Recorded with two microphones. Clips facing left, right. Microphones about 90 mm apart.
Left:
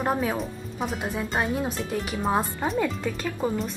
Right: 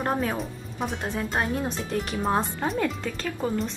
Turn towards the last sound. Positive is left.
turn(degrees=15)  # may be behind; listen again after turning